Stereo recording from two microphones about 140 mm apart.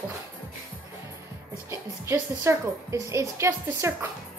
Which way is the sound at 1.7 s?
20° right (ahead or behind).